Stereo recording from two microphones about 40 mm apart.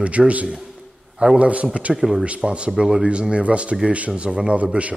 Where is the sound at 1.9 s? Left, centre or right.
Centre.